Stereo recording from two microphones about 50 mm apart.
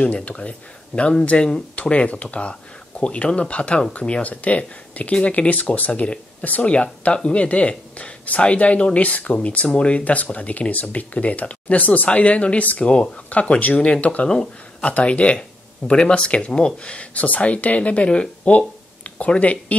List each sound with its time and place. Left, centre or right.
0.0 s speech: left
14.3 s speech: centre
14.9 s speech: left